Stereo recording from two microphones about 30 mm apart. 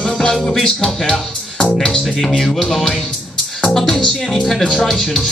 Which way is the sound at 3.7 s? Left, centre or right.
Centre.